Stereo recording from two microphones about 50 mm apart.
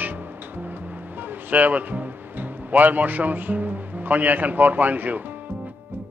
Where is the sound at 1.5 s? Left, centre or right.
Right.